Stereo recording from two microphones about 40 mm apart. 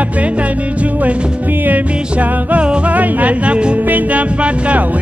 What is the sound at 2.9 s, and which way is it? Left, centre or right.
Music, right.